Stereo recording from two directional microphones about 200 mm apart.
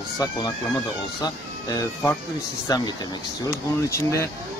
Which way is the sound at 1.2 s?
15° left (ahead or behind).